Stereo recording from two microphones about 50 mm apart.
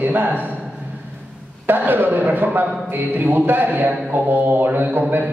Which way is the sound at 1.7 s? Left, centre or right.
Right.